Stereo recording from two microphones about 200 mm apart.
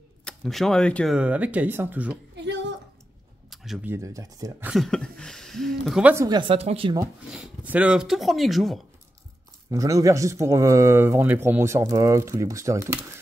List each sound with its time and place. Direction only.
0.2 s speech: 5° left (ahead or behind)
2.3 s a sound: 60° right (ahead or behind)
3.4 s a sound: centre (ahead or behind)
3.9 s speech: 15° right (ahead or behind)
4.6 s speech: centre (ahead or behind)
6.1 s a woman's voice: 20° right (ahead or behind)
7.2 s speech: 5° right (ahead or behind)
9.7 s speech: 15° right (ahead or behind)